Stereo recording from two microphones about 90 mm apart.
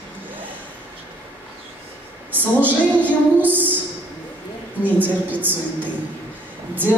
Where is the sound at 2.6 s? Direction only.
20° right (ahead or behind).